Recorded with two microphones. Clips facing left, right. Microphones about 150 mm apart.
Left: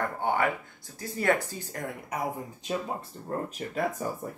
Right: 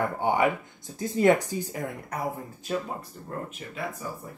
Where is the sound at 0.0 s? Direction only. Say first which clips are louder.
Right 3 dB; 15° right (ahead or behind).